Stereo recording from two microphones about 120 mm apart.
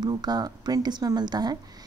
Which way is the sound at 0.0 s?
35° right (ahead or behind).